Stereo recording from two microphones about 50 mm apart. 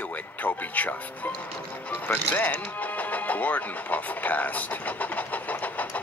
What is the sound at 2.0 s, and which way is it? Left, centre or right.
Speech, left.